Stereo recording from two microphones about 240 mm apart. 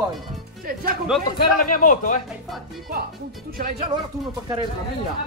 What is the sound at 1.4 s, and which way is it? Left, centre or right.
Speech, left.